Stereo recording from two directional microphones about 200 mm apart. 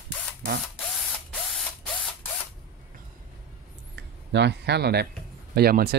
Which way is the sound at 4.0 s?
60° right (ahead or behind).